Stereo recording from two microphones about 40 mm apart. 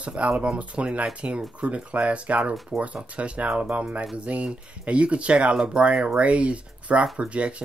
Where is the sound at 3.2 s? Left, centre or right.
Right.